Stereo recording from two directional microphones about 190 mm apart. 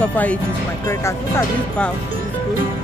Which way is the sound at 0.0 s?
5° left (ahead or behind).